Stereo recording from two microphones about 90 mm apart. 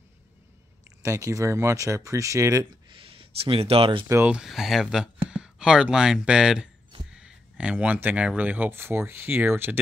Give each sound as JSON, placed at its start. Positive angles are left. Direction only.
{"t": 1.0, "sound": "speech", "side_deg": -35}
{"t": 2.9, "sound": "speech", "side_deg": -80}
{"t": 4.3, "sound": "speech", "side_deg": -5}